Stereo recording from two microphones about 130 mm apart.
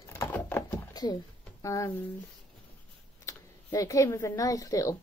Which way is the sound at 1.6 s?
25° left (ahead or behind).